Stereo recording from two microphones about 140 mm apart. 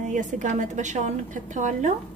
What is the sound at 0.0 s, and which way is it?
Speech, 65° right (ahead or behind).